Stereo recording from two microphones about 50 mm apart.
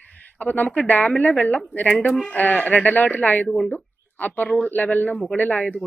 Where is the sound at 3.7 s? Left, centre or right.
Left.